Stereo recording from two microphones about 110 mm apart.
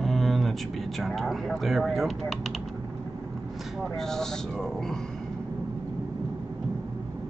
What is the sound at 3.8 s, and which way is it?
Speech, 5° left (ahead or behind).